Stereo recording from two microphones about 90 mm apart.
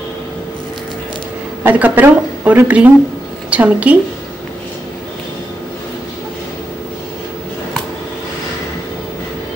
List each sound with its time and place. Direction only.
1.6 s a woman's voice: 20° right (ahead or behind)